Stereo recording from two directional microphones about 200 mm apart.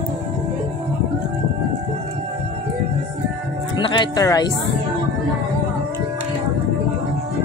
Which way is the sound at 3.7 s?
20° left (ahead or behind).